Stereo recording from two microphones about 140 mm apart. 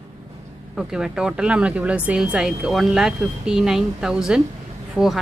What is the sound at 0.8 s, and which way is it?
A woman's voice, 5° right (ahead or behind).